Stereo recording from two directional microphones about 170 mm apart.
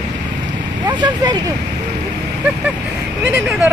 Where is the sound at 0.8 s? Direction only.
25° right (ahead or behind).